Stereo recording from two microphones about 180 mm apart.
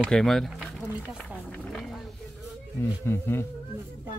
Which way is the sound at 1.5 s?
5° left (ahead or behind).